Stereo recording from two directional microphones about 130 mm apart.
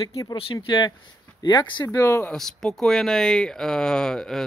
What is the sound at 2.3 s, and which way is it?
Speech, centre (ahead or behind).